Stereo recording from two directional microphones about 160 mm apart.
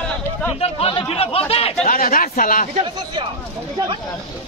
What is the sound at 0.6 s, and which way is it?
Speech, 35° left (ahead or behind).